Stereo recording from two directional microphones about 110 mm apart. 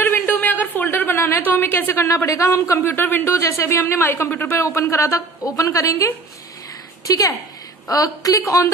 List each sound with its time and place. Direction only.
0.0 s a woman's voice: 15° left (ahead or behind)